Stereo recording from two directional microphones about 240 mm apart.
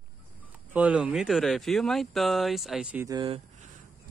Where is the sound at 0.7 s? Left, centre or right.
Centre.